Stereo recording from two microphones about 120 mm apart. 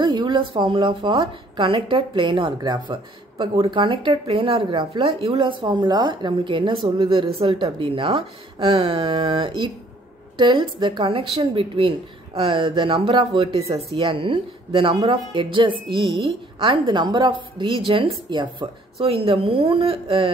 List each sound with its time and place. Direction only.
0.0 s speech: 40° right (ahead or behind)